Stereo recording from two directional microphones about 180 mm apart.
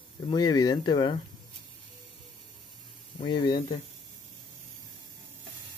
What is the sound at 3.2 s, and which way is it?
Speech, 25° left (ahead or behind).